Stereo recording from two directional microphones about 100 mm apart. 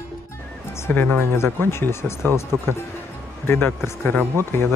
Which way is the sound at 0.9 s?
20° left (ahead or behind).